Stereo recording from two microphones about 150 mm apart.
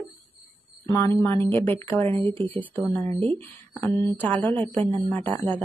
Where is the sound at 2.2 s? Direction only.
35° right (ahead or behind).